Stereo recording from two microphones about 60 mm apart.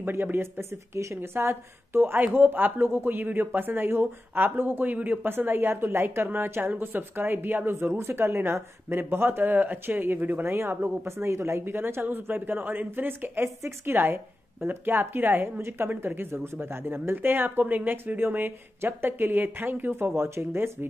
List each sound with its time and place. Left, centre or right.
0.0 s speech: right
7.8 s speech: right
10.4 s speech: right